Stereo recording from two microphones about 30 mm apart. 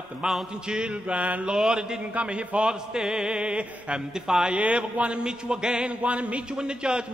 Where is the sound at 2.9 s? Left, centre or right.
Right.